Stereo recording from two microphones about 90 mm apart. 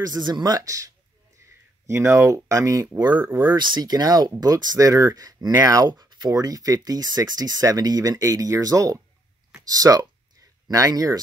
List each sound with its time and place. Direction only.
0.0 s speech: 50° right (ahead or behind)
3.0 s speech: 55° right (ahead or behind)